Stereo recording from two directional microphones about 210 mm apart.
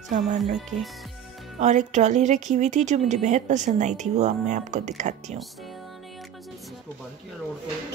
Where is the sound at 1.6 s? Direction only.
35° right (ahead or behind).